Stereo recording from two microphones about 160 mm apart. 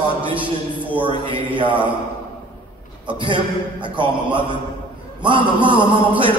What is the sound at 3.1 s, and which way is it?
Speech, 30° right (ahead or behind).